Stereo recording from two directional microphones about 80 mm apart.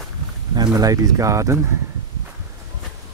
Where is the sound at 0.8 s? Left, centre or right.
Right.